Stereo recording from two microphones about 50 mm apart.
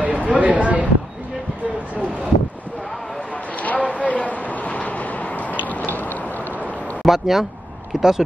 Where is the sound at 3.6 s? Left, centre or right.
Left.